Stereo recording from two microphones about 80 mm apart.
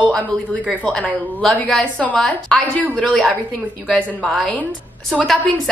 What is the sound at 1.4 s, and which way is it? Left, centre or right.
A woman's voice, centre.